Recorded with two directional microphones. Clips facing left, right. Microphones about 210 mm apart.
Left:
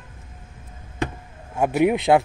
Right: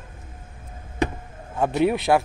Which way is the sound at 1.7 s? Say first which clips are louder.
Left 3 dB; 15° left (ahead or behind).